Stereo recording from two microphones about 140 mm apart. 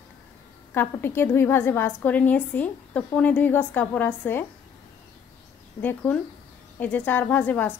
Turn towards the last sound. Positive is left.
turn(degrees=10)  # may be behind; listen again after turning